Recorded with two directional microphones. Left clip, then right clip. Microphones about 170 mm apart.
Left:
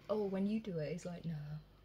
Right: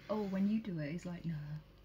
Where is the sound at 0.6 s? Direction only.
30° left (ahead or behind).